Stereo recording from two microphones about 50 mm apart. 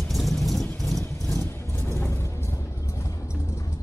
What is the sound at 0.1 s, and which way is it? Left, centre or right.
Vehicle, centre.